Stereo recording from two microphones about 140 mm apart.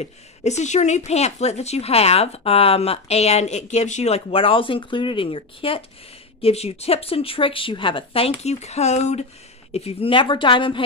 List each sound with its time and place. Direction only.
0.0 s speech: 55° left (ahead or behind); by 10.8 s 35° left (ahead or behind)